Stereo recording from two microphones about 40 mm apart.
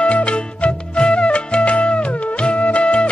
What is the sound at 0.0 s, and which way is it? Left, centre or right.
Music, left.